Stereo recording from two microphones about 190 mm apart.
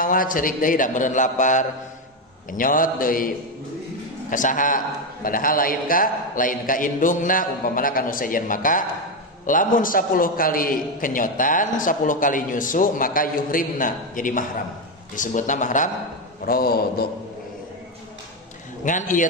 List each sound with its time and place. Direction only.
0.0 s a man's voice: 45° left (ahead or behind)
16.4 s a man's voice: 50° left (ahead or behind)
18.9 s a man's voice: 40° left (ahead or behind)